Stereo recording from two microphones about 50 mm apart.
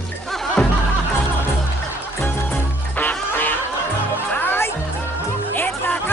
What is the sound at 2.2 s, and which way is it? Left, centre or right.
Music, left.